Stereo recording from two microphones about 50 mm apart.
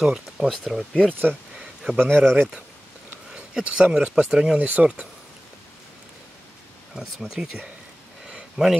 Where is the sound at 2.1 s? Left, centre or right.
Centre.